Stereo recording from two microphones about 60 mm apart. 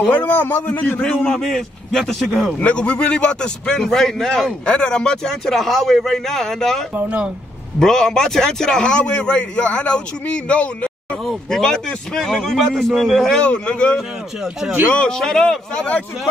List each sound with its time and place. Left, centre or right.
0.1 s a man's voice: left
1.0 s a man's voice: centre
2.6 s a man's voice: centre
4.6 s a man's voice: centre
7.0 s speech: right
7.8 s a man's voice: centre
11.2 s a man's voice: centre
13.4 s a man's voice: centre
13.9 s speech: centre
14.9 s a man's voice: left
15.1 s a man's voice: centre